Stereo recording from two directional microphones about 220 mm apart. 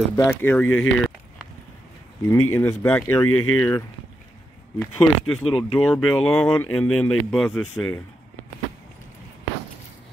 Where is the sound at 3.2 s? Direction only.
80° left.